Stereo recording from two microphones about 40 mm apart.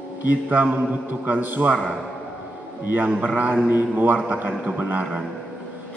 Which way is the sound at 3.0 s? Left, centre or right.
Right.